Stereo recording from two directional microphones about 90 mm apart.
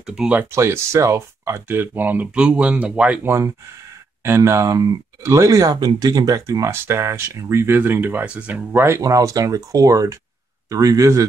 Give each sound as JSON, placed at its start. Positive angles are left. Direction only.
{"t": 0.0, "sound": "speech", "side_deg": -5}
{"t": 0.3, "sound": "speech", "side_deg": -25}
{"t": 3.3, "sound": "speech", "side_deg": -30}
{"t": 8.8, "sound": "speech", "side_deg": -35}